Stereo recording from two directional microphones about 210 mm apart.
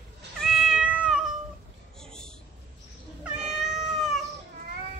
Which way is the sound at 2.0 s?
5° left (ahead or behind).